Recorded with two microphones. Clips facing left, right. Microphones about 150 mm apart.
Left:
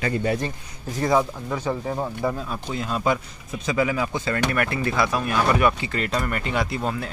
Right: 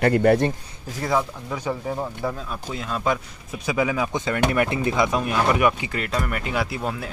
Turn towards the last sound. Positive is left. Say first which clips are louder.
# left 1 dB
turn(degrees=-5)  # may be behind; listen again after turning